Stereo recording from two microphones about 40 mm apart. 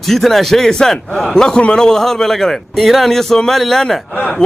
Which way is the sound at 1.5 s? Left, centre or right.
Left.